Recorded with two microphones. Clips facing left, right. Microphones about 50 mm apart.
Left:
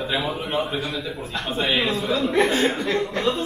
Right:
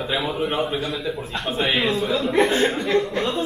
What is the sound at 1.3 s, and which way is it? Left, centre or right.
A man's voice, centre.